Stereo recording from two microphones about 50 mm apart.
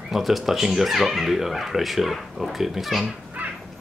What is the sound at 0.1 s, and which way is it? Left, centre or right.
Speech, centre.